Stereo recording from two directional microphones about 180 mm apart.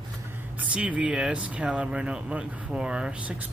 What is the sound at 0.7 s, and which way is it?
Speech, 5° right (ahead or behind).